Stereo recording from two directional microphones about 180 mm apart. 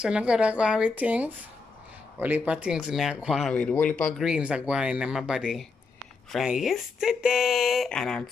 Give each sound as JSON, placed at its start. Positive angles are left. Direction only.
{"t": 0.0, "sound": "speech", "side_deg": -5}
{"t": 4.2, "sound": "speech", "side_deg": -5}